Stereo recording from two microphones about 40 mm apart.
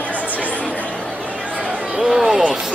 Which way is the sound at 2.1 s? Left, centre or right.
Centre.